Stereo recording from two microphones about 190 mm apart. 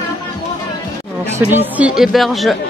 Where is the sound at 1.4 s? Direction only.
10° right (ahead or behind).